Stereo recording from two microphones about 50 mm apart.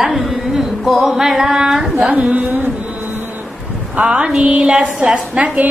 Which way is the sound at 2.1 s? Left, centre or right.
Right.